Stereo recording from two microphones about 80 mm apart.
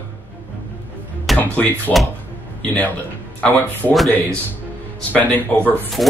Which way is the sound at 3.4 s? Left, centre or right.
Left.